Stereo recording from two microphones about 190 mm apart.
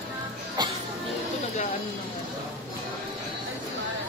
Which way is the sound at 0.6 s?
25° right (ahead or behind).